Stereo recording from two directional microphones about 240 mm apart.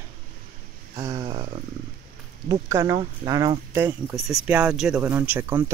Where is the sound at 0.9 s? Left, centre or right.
Centre.